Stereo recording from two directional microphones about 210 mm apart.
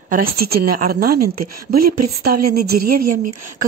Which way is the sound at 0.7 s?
45° right (ahead or behind).